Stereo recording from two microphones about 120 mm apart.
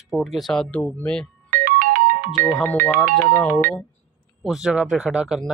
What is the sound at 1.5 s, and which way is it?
Ringtone, 90° right.